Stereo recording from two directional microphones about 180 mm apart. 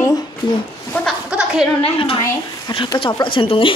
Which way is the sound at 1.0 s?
5° right (ahead or behind).